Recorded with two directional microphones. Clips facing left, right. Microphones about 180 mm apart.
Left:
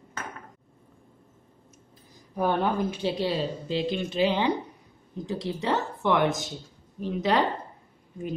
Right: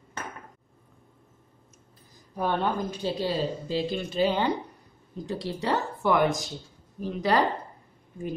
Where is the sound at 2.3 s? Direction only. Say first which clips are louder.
Left 2 dB; 5° left (ahead or behind).